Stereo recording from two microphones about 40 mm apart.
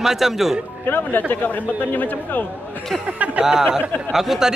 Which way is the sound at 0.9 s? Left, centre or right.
Left.